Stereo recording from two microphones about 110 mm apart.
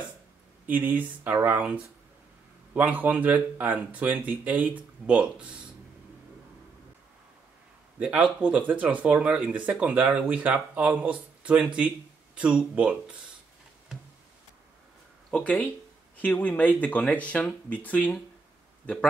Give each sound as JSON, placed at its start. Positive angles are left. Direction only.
{"t": 0.7, "sound": "speech", "side_deg": -15}
{"t": 8.0, "sound": "speech", "side_deg": -10}
{"t": 15.3, "sound": "speech", "side_deg": 10}